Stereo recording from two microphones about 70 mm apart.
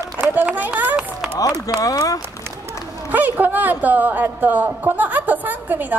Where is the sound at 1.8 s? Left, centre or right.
Left.